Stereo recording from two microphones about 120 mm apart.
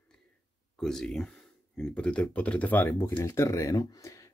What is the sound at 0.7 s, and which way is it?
Speech, 5° left (ahead or behind).